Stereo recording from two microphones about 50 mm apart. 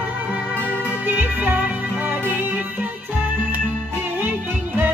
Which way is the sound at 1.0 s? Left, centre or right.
Right.